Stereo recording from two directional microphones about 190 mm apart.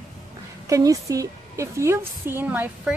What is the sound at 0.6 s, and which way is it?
A woman's voice, 15° right (ahead or behind).